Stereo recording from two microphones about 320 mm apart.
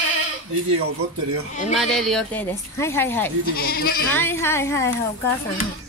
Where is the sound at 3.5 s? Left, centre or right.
Left.